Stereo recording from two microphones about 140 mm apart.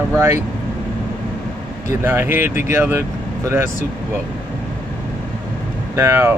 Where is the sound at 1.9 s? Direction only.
15° right (ahead or behind).